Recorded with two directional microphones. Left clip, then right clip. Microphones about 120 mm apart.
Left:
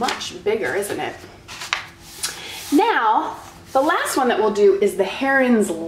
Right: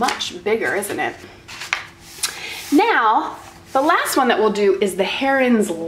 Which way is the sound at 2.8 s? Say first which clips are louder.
Right 2 dB; 25° right (ahead or behind).